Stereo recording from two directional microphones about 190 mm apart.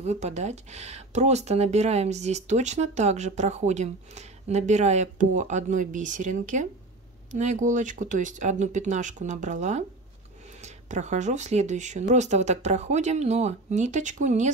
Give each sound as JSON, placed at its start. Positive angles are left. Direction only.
{"t": 0.0, "sound": "speech", "side_deg": -35}